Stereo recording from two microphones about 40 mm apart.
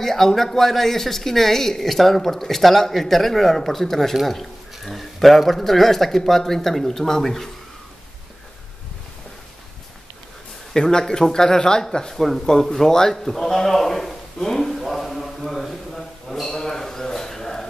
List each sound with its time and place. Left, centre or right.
0.0 s speech: centre
10.7 s speech: centre
12.4 s a sound: centre